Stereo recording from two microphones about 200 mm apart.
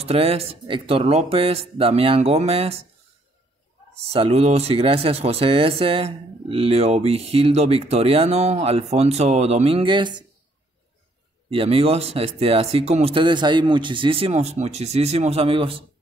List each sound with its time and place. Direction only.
0.0 s speech: 30° right (ahead or behind)
4.1 s speech: 30° right (ahead or behind)
11.5 s speech: 30° right (ahead or behind)